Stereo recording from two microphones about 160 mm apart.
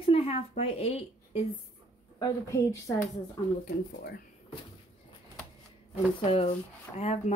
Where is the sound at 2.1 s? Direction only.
20° left (ahead or behind).